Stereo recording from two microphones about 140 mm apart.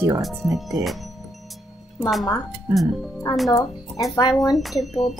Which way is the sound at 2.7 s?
Centre (ahead or behind).